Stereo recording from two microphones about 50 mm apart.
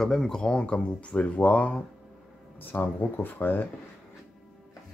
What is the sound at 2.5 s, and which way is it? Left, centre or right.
Speech, left.